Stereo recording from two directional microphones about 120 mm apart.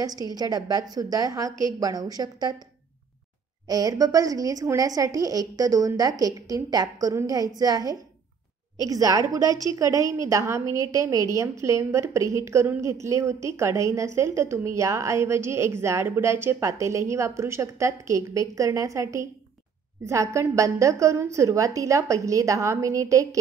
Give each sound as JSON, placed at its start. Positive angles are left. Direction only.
{"t": 0.0, "sound": "a woman's voice", "side_deg": -30}
{"t": 3.6, "sound": "a woman's voice", "side_deg": -30}